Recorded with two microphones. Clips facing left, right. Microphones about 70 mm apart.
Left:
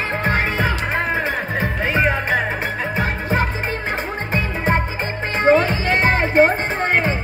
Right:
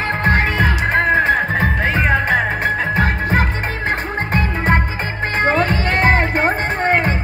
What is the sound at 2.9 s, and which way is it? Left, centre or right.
Music, right.